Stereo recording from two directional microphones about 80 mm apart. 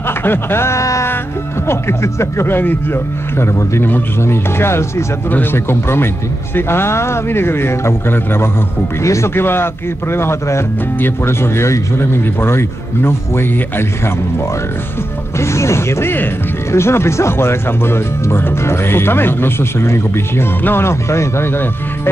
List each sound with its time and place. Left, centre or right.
0.2 s speech: left
15.3 s speech: left